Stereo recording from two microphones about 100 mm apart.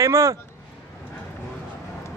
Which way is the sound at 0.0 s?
30° right (ahead or behind).